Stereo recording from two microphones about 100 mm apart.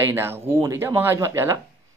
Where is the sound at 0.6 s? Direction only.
35° right (ahead or behind).